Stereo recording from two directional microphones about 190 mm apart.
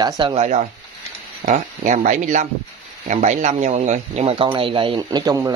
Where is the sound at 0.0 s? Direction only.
25° right (ahead or behind).